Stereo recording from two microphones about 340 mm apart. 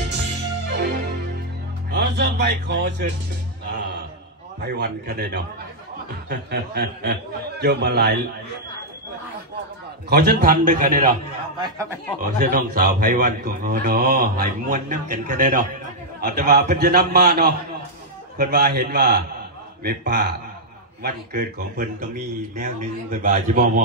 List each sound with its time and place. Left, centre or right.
0.7 s music: right
1.9 s speech: right
4.6 s a man's voice: right
10.0 s a man's voice: right
11.5 s speech: centre
12.2 s a man's voice: right